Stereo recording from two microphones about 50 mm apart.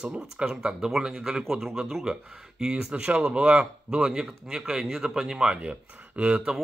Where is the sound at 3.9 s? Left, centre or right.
Centre.